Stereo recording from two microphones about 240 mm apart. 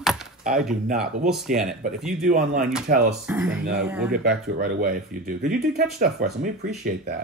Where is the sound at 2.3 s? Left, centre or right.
Right.